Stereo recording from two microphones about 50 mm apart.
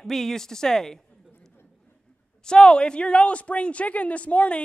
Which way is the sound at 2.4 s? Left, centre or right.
Centre.